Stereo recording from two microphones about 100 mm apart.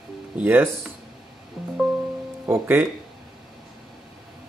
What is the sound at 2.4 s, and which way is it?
Speech, 20° right (ahead or behind).